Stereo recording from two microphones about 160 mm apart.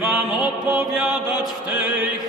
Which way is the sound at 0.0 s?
5° right (ahead or behind).